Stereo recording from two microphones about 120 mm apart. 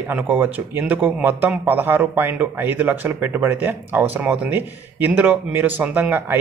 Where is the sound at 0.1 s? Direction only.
15° right (ahead or behind).